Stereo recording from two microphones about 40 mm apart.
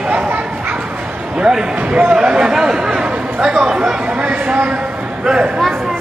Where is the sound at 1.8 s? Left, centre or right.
Right.